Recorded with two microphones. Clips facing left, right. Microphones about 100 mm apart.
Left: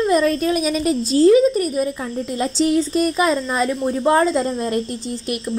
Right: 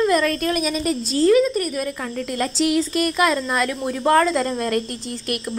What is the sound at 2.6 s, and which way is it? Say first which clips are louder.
Speech: left 3 dB; 85° right.